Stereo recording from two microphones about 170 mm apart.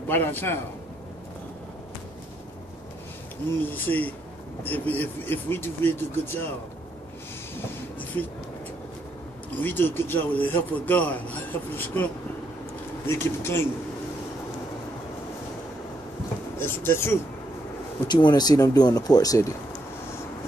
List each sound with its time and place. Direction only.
0.1 s a man's voice: 10° left (ahead or behind)
3.7 s a man's voice: 10° left (ahead or behind)
9.6 s a man's voice: 10° left (ahead or behind)
16.5 s a man's voice: 15° left (ahead or behind)
18.0 s speech: 25° left (ahead or behind)